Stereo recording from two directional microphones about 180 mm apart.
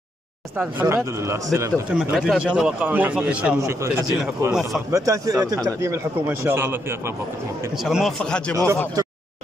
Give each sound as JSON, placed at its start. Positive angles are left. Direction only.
{"t": 0.6, "sound": "speech", "side_deg": -15}
{"t": 2.0, "sound": "speech", "side_deg": 0}
{"t": 4.5, "sound": "speech", "side_deg": -5}
{"t": 4.9, "sound": "speech", "side_deg": -20}
{"t": 7.8, "sound": "speech", "side_deg": 0}